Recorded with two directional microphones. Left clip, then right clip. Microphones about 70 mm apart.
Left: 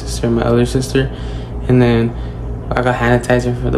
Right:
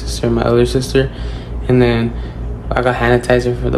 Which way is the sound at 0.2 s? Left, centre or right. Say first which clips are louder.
Right 1 dB; left.